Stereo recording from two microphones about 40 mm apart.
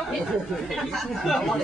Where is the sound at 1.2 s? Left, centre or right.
Centre.